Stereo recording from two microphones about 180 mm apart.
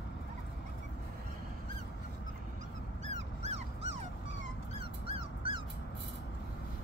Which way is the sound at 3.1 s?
35° right (ahead or behind).